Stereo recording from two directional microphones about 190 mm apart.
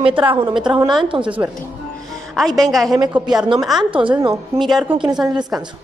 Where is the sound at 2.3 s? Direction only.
Centre (ahead or behind).